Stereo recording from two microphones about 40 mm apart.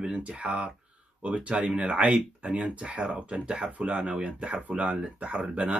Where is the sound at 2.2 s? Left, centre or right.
Right.